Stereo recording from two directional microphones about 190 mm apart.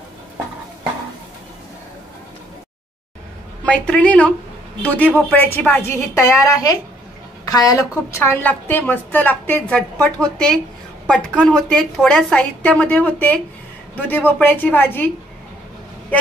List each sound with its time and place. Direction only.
3.6 s a woman's voice: 5° left (ahead or behind)